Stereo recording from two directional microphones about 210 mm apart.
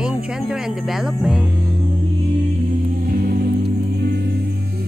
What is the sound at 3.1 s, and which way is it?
Music, 45° right (ahead or behind).